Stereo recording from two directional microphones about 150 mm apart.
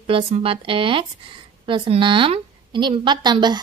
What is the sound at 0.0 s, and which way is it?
A woman's voice, 40° right (ahead or behind).